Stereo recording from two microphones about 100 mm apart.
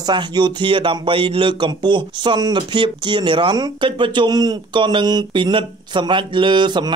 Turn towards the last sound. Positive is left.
turn(degrees=-50)  # may be behind; listen again after turning